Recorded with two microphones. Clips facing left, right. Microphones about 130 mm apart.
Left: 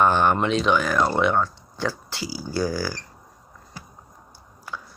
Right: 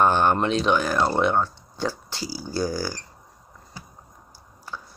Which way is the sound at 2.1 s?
5° left (ahead or behind).